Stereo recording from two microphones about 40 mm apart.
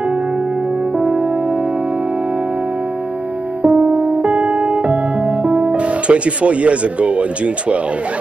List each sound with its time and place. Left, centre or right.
0.9 s music: right
3.6 s music: right